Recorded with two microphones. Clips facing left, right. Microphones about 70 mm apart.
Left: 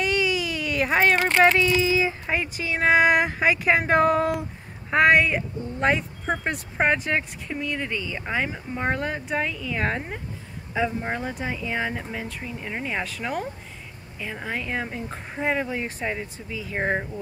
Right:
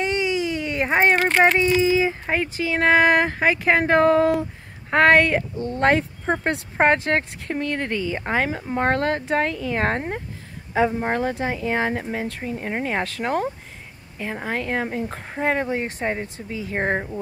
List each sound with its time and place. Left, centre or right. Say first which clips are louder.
0.0 s speech: right 2 dB; right
4.9 s speech: right 3 dB; right
6.4 s speech: right 5 dB; right
8.3 s speech: right 3 dB; right
11.1 s speech: right 6 dB; right
12.1 s speech: right 6 dB; right
16.4 s speech: right 3 dB; right
16.7 s speech: right 2 dB; right